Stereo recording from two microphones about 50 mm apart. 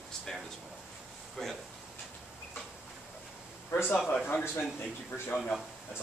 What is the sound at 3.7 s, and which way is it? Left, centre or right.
Speech, left.